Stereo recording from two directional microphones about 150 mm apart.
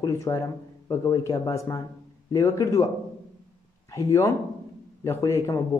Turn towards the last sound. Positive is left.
turn(degrees=20)  # may be behind; listen again after turning